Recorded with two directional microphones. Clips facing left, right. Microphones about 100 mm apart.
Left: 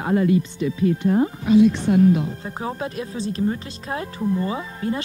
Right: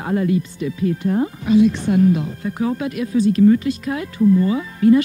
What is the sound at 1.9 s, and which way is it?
Speech, 30° left (ahead or behind).